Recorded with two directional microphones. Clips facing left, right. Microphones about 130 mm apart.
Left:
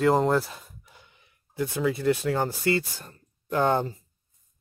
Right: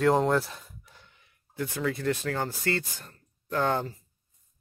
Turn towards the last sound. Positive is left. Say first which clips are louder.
# left 4 dB
turn(degrees=20)  # may be behind; listen again after turning